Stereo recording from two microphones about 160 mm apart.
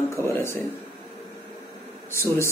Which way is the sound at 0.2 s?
15° left (ahead or behind).